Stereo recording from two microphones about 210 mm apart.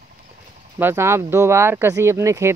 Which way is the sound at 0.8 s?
15° right (ahead or behind).